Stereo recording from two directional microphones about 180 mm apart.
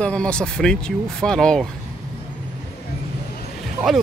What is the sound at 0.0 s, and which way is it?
Speech, 5° left (ahead or behind).